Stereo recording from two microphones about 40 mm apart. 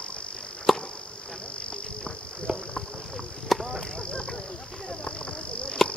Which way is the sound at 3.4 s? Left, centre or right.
Centre.